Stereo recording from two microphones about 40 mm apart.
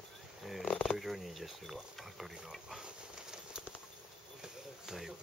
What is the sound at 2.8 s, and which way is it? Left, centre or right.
Patter, right.